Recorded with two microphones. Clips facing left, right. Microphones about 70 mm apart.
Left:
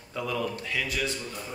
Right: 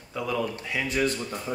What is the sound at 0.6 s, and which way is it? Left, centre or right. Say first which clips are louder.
Speech: right 3 dB; right.